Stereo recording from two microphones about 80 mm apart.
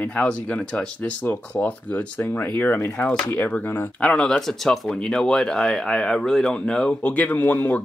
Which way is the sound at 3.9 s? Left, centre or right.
Centre.